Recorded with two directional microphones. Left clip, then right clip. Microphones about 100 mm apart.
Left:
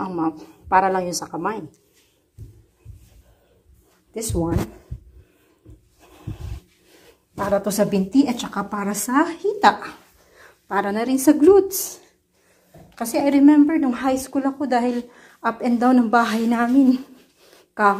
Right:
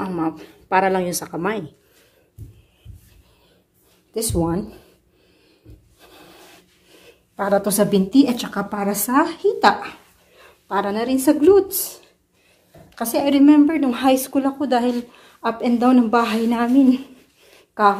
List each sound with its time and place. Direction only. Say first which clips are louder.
0.0 s speech: even; 15° right (ahead or behind)
1.3 s speech: right 2 dB; 40° right (ahead or behind)
4.1 s speech: right 3 dB; 10° right (ahead or behind)
5.9 s a sound: left 2 dB; 15° right (ahead or behind)
7.1 s a woman's voice: right 2 dB; 5° right (ahead or behind)
9.7 s a woman's voice: even; 20° left (ahead or behind)
12.9 s speech: right 1 dB; centre (ahead or behind)
13.7 s speech: right 3 dB; 15° right (ahead or behind)
14.4 s speech: right 1 dB; 5° left (ahead or behind)
15.8 s a woman's voice: right 1 dB; 15° left (ahead or behind)
16.1 s speech: even; 30° left (ahead or behind)
16.6 s a woman's voice: right 1 dB; 5° left (ahead or behind)
17.5 s a sound: right 2 dB; 25° left (ahead or behind)